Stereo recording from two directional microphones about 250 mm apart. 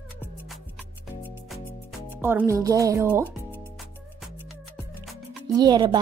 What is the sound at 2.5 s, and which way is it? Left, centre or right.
Speech, centre.